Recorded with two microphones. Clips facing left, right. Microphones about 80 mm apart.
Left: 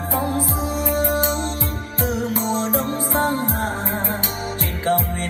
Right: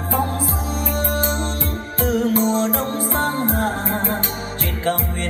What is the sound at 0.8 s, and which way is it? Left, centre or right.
Music, centre.